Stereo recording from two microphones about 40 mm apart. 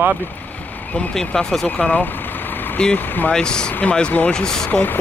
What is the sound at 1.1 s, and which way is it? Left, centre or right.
Speech, centre.